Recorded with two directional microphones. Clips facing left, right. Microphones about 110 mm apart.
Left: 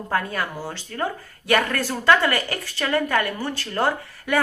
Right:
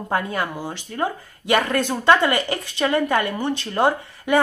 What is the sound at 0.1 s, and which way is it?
Speech, 20° right (ahead or behind).